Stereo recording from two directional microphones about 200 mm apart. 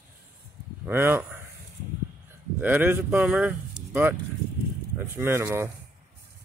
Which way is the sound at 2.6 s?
10° right (ahead or behind).